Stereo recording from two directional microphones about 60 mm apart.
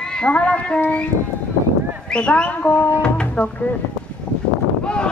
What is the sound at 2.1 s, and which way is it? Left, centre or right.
Speech, centre.